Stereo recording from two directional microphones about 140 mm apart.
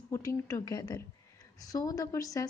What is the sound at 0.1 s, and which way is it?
Speech, 20° left (ahead or behind).